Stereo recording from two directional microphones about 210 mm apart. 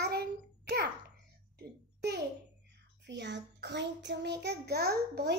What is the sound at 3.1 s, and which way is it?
A child's voice, 55° right (ahead or behind).